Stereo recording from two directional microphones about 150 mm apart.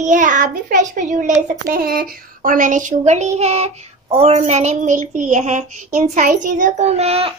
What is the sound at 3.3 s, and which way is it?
Child singing, 45° right (ahead or behind).